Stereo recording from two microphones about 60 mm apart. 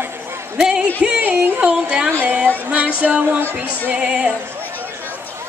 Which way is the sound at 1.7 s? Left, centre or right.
Centre.